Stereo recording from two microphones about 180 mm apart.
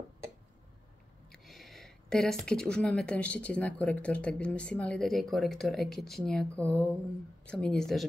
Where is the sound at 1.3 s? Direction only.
Centre (ahead or behind).